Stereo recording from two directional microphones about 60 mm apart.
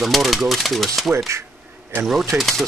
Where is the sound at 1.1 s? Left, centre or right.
Right.